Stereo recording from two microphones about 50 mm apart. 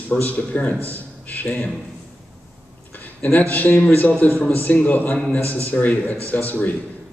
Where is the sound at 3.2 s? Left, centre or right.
Left.